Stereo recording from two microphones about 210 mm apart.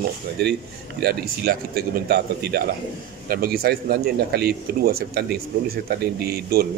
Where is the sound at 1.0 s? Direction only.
50° right (ahead or behind).